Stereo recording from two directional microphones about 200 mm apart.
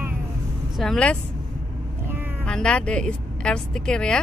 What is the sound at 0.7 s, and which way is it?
Speech, 5° left (ahead or behind).